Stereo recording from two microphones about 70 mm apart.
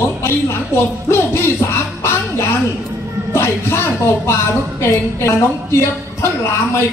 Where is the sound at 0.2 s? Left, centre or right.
Left.